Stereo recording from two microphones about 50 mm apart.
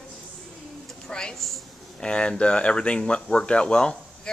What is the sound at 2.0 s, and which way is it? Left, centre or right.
Speech, centre.